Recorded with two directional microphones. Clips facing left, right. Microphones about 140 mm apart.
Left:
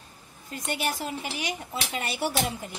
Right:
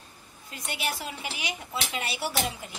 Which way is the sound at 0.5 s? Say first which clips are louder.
Left 3 dB; 45° left (ahead or behind).